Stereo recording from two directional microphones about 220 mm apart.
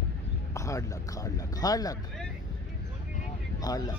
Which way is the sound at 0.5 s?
15° left (ahead or behind).